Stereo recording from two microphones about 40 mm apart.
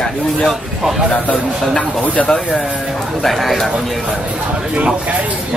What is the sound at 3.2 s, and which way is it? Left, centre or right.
Speech, centre.